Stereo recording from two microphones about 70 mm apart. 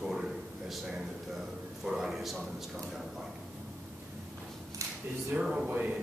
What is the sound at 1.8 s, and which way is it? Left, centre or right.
Speech, centre.